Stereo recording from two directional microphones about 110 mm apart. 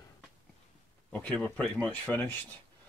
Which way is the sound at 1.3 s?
10° left (ahead or behind).